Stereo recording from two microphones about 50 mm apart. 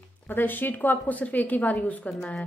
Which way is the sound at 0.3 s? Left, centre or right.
Left.